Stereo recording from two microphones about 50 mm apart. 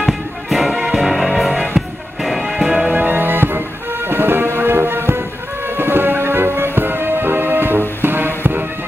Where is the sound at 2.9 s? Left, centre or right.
Right.